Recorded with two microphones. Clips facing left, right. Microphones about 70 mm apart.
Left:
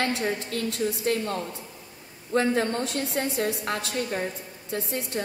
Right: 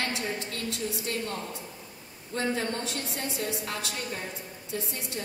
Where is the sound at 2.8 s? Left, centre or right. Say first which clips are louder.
Left 6 dB; left.